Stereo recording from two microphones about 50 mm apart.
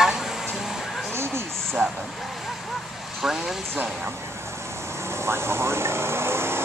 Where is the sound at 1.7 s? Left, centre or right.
Centre.